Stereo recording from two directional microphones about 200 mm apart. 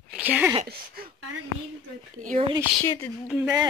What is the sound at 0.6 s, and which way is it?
Speech, 50° right (ahead or behind).